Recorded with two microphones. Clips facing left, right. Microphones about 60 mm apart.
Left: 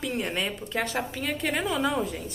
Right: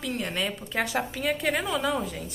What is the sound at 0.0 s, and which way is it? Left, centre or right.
A woman's voice, centre.